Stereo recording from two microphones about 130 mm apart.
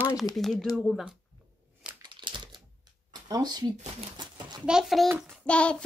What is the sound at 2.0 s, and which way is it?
Crumpling, 35° right (ahead or behind).